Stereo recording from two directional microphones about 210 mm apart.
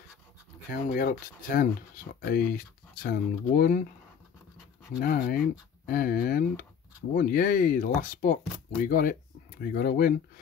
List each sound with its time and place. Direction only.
0.7 s speech: 45° left (ahead or behind)
5.0 s speech: 45° left (ahead or behind)